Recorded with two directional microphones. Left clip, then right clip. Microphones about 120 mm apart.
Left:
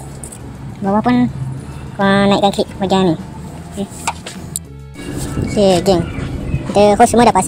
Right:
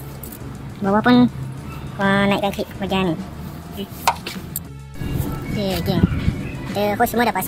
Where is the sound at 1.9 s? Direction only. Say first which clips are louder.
Left 5 dB; 5° left (ahead or behind).